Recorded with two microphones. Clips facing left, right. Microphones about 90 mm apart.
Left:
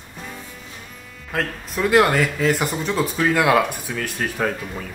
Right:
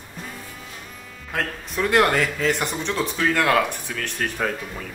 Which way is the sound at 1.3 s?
Centre (ahead or behind).